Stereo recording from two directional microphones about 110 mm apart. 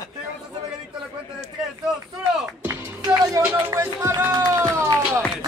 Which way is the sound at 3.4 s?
30° right (ahead or behind).